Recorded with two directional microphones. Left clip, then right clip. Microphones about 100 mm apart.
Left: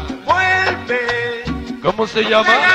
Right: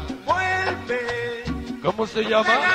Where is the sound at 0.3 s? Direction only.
35° right (ahead or behind).